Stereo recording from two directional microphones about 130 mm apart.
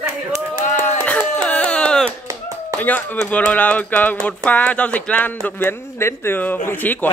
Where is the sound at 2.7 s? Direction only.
15° left (ahead or behind).